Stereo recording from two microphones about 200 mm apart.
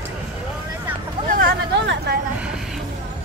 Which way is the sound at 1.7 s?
60° right (ahead or behind).